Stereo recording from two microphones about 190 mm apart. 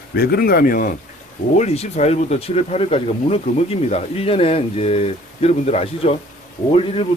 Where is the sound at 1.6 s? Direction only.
35° left (ahead or behind).